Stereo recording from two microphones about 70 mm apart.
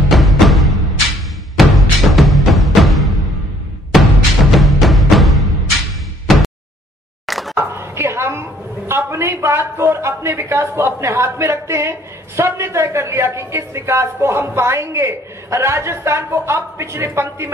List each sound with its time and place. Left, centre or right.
0.1 s music: centre
4.5 s music: centre
6.3 s a sound: centre
7.5 s a woman's voice: right